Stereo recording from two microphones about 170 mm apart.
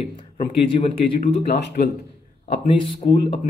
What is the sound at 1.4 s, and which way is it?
Speech, 70° left (ahead or behind).